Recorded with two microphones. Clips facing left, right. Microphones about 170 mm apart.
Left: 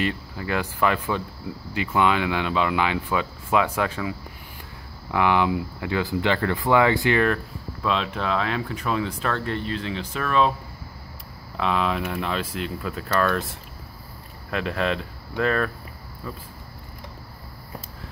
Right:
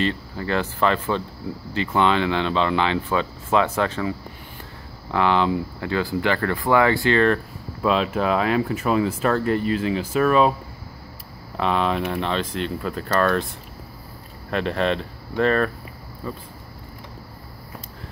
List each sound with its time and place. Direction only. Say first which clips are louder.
0.0 s speech: right 2 dB; 10° left (ahead or behind)
5.1 s speech: right 1 dB; 15° left (ahead or behind)
7.8 s speech: right 5 dB; 5° right (ahead or behind)
11.5 s speech: right 2 dB; centre (ahead or behind)
14.5 s speech: right 3 dB; 5° left (ahead or behind)